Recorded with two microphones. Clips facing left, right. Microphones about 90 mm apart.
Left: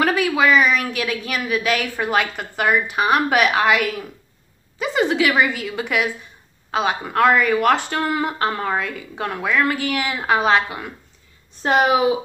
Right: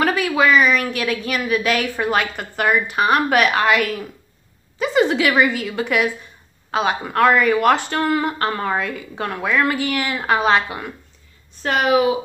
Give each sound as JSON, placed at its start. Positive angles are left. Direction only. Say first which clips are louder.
{"t": 0.0, "sound": "speech", "louder": "even", "side_deg": 0}
{"t": 11.6, "sound": "speech", "louder": "even", "side_deg": 20}